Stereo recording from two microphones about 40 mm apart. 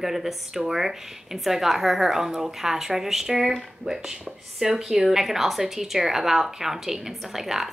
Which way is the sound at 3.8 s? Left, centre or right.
Right.